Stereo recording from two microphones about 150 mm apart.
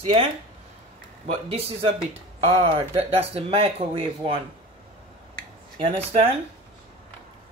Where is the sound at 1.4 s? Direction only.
40° right (ahead or behind).